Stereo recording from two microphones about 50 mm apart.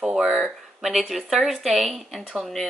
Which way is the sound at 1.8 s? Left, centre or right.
Centre.